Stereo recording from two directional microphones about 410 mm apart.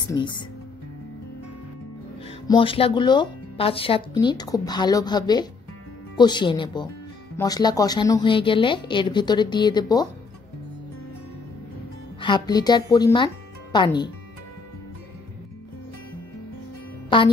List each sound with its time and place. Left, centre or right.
0.1 s speech: centre
2.4 s speech: centre
12.2 s speech: centre
17.1 s speech: centre